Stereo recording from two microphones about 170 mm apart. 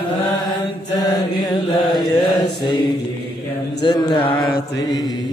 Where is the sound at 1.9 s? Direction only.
25° left (ahead or behind).